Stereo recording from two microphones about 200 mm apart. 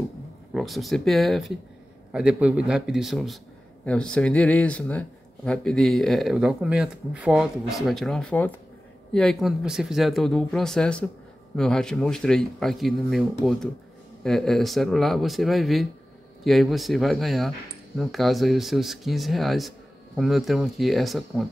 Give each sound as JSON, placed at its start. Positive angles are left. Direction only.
{"t": 0.6, "sound": "speech", "side_deg": 0}